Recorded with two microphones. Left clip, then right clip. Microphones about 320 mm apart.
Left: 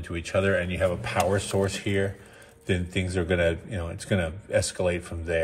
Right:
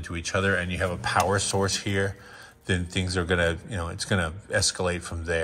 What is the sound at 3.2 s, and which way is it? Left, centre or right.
Speech, right.